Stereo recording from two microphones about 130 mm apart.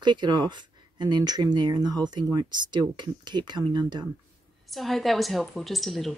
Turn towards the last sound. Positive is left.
turn(degrees=0)  # may be behind; listen again after turning